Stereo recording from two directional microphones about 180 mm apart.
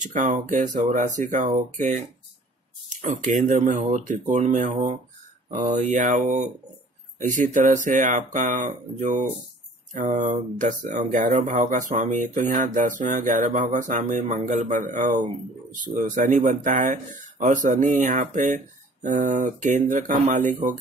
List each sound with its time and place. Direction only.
0.0 s speech: 45° right (ahead or behind)
5.9 s speech: 45° right (ahead or behind)